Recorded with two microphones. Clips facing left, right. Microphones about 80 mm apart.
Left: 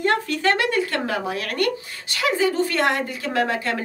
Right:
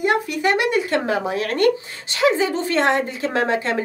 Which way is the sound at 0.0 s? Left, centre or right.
Centre.